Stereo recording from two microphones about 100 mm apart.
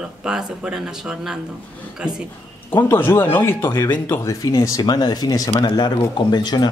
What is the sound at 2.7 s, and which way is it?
Speech, 20° left (ahead or behind).